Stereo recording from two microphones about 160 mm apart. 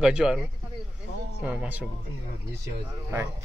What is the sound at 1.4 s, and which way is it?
Speech, 10° right (ahead or behind).